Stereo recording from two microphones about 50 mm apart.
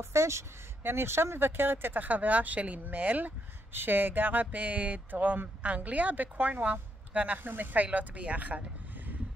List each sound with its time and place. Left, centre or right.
0.0 s a woman's voice: right
0.8 s speech: right